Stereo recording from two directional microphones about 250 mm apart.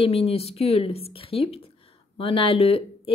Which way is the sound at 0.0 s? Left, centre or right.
Left.